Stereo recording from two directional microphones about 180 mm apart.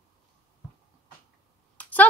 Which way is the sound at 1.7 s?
10° left (ahead or behind).